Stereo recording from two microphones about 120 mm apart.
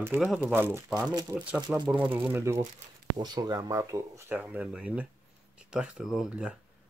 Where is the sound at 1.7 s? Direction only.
10° right (ahead or behind).